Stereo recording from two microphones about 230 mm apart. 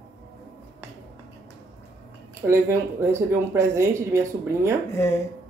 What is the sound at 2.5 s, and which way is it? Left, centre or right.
Speech, centre.